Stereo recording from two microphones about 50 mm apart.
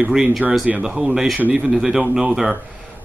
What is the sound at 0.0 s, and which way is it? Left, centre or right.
Speech, centre.